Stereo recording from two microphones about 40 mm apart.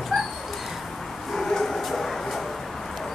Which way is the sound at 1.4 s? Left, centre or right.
Centre.